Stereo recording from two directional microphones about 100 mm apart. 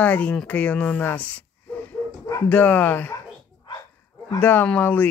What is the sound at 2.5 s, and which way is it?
Speech, 15° left (ahead or behind).